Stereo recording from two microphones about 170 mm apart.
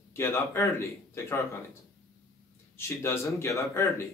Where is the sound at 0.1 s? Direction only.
15° left (ahead or behind).